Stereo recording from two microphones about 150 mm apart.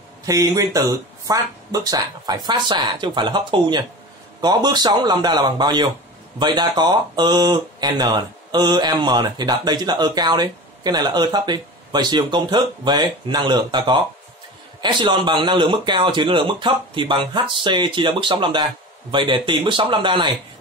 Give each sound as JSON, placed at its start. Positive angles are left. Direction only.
{"t": 0.2, "sound": "speech", "side_deg": -25}